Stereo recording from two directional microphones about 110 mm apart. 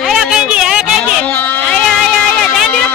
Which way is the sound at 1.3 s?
15° left (ahead or behind).